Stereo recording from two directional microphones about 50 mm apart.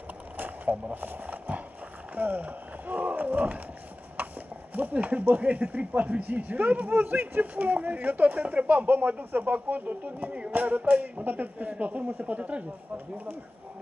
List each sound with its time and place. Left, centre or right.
0.7 s speech: right
1.0 s horse: right
2.1 s speech: right
4.7 s speech: right
12.9 s speech: right